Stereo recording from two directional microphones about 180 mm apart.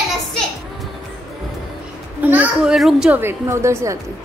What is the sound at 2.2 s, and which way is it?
A woman's voice, 5° right (ahead or behind).